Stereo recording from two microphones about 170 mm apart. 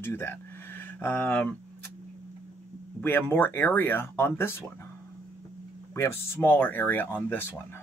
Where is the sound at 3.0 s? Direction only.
10° left (ahead or behind).